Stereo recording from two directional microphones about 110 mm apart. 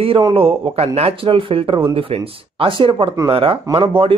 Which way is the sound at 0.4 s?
65° right (ahead or behind).